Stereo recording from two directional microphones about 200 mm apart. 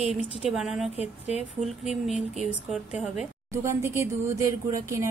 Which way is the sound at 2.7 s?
5° right (ahead or behind).